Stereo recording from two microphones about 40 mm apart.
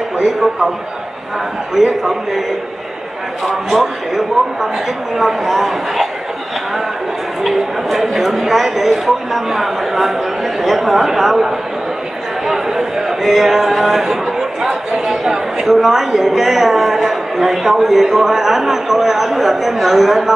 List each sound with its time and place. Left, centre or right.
0.2 s speech: centre
1.8 s speech: centre
3.4 s speech: centre
7.4 s speech: centre
12.4 s a sound: centre
14.6 s speech: centre